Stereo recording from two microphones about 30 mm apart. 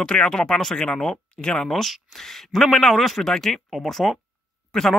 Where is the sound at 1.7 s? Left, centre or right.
Centre.